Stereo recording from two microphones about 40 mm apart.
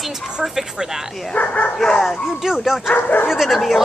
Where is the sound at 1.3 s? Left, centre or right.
Left.